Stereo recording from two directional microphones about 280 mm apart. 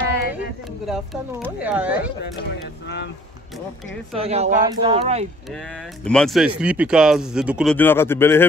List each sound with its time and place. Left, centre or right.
0.3 s speech: centre
3.5 s speech: centre
4.2 s speech: right
5.5 s speech: centre